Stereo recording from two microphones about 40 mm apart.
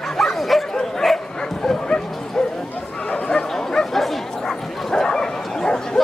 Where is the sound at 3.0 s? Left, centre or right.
Left.